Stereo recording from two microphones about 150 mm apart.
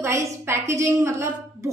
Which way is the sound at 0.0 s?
20° right (ahead or behind).